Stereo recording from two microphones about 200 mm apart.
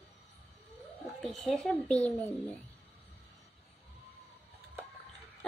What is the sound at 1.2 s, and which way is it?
A child's voice, centre (ahead or behind).